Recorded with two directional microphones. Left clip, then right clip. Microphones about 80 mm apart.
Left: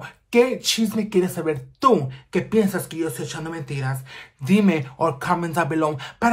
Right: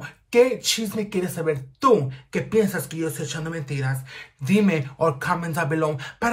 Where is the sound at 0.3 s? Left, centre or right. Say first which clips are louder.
Even; left.